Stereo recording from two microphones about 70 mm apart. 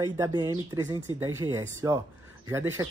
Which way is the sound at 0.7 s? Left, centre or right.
Right.